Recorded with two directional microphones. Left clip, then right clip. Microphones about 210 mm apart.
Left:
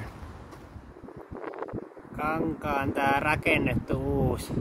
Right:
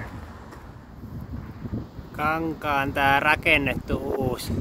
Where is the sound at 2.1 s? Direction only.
5° left (ahead or behind).